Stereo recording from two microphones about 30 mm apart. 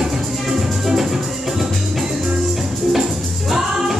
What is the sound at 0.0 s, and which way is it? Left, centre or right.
Music, centre.